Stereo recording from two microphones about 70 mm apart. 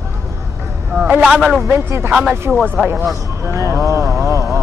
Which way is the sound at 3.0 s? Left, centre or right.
Right.